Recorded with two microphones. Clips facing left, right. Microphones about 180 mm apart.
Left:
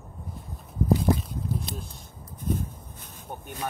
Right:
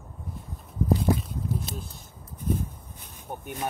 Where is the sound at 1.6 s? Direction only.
Centre (ahead or behind).